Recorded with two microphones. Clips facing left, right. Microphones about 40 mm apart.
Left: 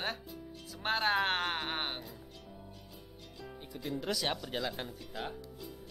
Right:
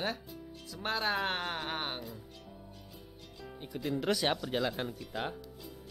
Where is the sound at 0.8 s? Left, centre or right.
Left.